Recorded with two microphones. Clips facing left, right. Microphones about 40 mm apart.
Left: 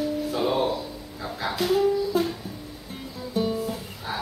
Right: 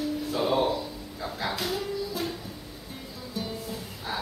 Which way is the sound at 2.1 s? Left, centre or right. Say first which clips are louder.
Left 8 dB; left.